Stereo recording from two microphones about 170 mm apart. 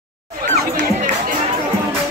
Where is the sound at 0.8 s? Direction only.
50° right (ahead or behind).